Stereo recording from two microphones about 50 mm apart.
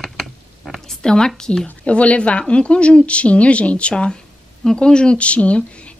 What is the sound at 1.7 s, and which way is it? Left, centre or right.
Speech, left.